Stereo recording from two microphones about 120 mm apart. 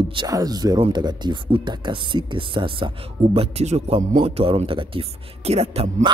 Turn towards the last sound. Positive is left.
turn(degrees=-60)  # may be behind; listen again after turning